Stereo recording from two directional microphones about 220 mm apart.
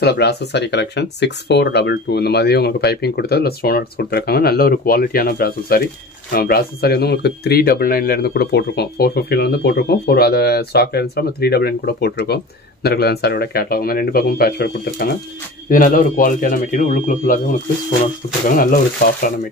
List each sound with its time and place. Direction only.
0.0 s speech: 50° left (ahead or behind)